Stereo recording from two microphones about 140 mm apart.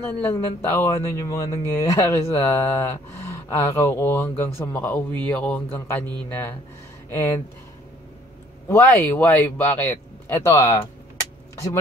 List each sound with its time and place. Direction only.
0.0 s speech: 15° left (ahead or behind)
8.6 s speech: 15° left (ahead or behind)